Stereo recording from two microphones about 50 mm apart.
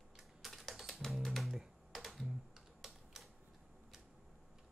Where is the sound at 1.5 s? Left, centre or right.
Centre.